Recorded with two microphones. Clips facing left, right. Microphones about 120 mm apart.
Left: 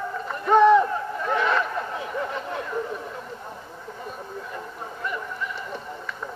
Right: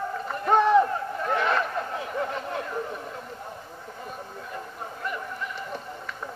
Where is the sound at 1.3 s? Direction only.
45° right (ahead or behind).